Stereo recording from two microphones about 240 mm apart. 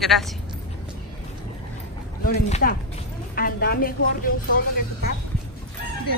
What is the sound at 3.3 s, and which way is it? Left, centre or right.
A woman's voice, left.